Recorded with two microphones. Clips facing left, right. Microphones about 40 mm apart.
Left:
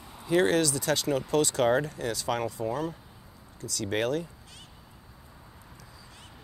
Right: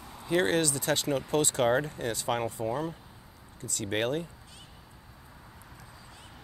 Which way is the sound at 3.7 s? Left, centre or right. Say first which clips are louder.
Left 1 dB; right.